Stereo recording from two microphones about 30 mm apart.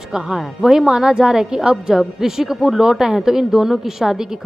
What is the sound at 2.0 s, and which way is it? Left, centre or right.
A woman's voice, centre.